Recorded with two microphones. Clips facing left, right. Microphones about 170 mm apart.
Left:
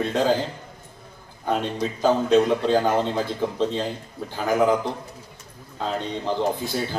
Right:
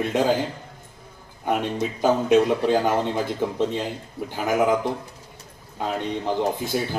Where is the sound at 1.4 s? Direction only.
15° right (ahead or behind).